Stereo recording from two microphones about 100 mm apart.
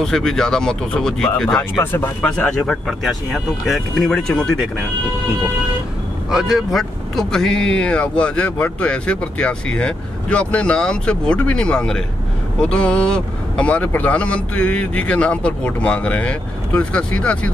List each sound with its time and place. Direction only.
0.0 s speech: 5° left (ahead or behind)
1.6 s speech: 25° left (ahead or behind)
2.2 s speech: 10° left (ahead or behind)
6.3 s speech: 5° right (ahead or behind)